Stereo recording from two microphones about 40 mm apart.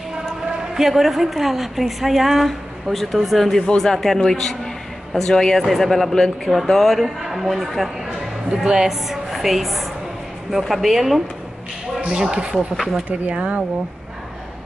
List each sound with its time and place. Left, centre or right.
0.7 s a woman's voice: centre
5.6 s a woman's voice: centre
7.2 s speech: centre
8.5 s speech: right
8.8 s a woman's voice: centre
12.1 s speech: centre
13.1 s speech: right